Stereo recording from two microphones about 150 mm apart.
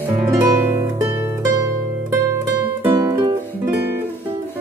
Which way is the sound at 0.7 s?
15° right (ahead or behind).